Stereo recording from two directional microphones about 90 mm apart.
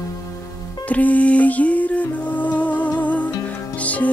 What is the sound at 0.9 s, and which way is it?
Music, 15° left (ahead or behind).